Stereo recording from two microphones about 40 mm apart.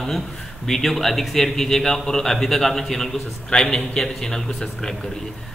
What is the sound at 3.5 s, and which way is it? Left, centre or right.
Speech, left.